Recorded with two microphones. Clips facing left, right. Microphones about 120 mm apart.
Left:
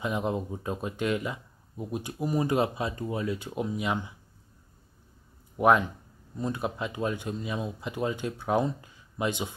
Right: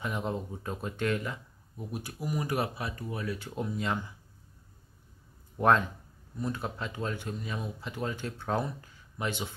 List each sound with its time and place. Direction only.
0.0 s speech: 20° left (ahead or behind)
5.6 s speech: 10° left (ahead or behind)